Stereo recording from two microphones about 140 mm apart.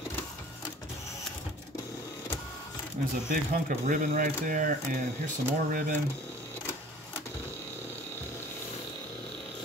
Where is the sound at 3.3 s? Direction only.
80° right.